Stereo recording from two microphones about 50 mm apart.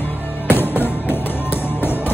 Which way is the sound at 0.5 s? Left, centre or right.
Left.